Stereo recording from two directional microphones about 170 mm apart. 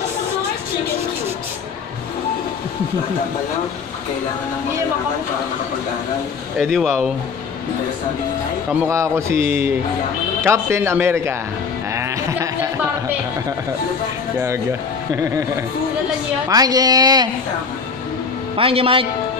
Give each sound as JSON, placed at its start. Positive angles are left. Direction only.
{"t": 6.6, "sound": "speech", "side_deg": 5}
{"t": 8.7, "sound": "speech", "side_deg": -15}
{"t": 11.9, "sound": "a sound", "side_deg": -15}
{"t": 15.1, "sound": "speech", "side_deg": -15}
{"t": 16.4, "sound": "a woman's voice", "side_deg": -20}
{"t": 18.6, "sound": "a man's voice", "side_deg": -35}